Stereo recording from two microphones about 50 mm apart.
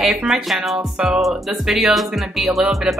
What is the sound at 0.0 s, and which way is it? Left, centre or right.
Speech, centre.